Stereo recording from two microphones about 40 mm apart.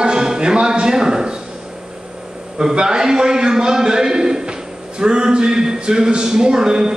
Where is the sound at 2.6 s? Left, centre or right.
Centre.